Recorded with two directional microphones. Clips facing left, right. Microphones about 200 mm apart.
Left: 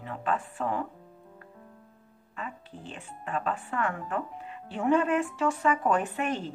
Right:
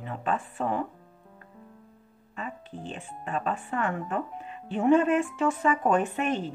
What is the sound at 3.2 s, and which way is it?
Speech, 20° right (ahead or behind).